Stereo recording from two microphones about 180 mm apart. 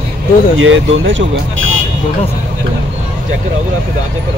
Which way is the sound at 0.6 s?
90° right.